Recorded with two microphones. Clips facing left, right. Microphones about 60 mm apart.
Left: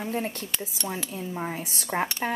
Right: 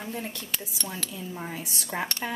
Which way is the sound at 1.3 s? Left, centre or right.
Left.